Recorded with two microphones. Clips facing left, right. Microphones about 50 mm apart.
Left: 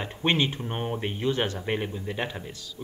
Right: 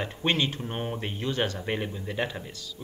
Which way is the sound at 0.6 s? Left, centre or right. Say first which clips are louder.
Left 2 dB; centre.